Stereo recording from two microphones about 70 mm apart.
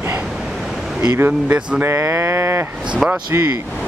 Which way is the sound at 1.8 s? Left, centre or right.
Right.